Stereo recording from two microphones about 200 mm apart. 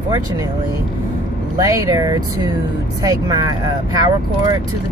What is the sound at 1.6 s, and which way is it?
Speech, 15° right (ahead or behind).